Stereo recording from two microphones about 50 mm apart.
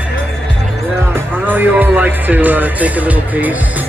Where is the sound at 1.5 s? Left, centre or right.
Right.